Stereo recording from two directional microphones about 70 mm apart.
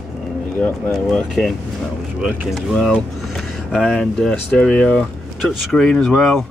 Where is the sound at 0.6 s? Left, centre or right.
Centre.